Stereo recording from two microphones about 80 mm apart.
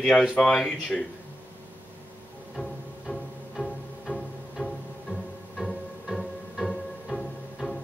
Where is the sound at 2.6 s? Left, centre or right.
Centre.